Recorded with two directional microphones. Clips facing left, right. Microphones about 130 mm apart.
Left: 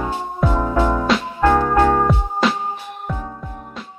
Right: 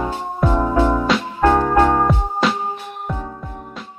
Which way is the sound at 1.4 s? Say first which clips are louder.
Right 1 dB; 15° right (ahead or behind).